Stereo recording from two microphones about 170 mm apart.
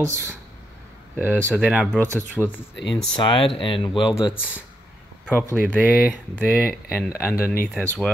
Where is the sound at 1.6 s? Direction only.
5° right (ahead or behind).